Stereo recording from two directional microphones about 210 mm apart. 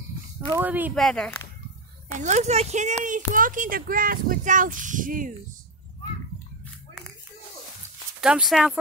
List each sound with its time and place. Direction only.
0.5 s speech: 10° right (ahead or behind)
0.9 s speech: 5° left (ahead or behind)
2.1 s speech: 35° right (ahead or behind)
8.2 s speech: 5° right (ahead or behind)